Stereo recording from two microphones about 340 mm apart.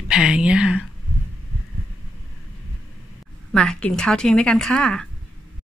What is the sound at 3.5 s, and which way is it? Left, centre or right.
Speech, centre.